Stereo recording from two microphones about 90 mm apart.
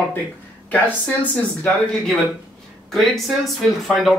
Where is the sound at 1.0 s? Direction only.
15° left (ahead or behind).